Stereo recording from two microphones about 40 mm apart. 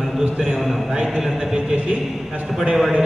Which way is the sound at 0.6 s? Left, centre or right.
Centre.